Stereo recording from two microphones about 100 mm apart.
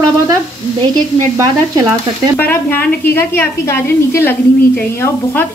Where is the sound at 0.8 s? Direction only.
40° right (ahead or behind).